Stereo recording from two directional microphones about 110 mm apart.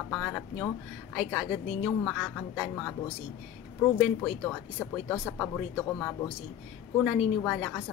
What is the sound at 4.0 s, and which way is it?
A woman's voice, 5° left (ahead or behind).